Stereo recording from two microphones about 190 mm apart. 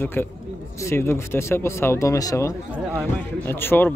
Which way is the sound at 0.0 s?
10° left (ahead or behind).